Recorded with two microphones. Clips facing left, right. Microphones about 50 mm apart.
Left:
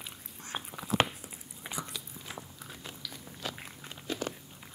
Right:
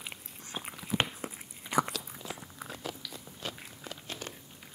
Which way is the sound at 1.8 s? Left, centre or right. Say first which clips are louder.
Right 4 dB; right.